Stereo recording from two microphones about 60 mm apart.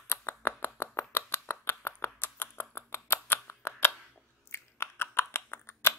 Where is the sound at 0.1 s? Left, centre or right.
Left.